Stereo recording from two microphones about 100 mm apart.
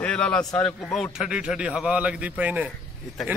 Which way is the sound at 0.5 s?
5° left (ahead or behind).